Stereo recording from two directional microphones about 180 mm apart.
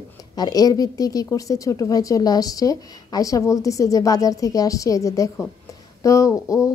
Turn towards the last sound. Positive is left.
turn(degrees=15)  # may be behind; listen again after turning